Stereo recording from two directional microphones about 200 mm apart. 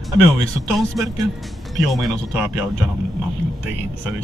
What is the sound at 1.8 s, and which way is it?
Speech, centre (ahead or behind).